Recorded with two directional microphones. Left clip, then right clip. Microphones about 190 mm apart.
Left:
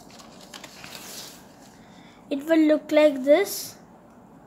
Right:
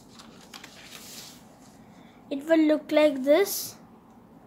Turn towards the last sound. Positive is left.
turn(degrees=-10)  # may be behind; listen again after turning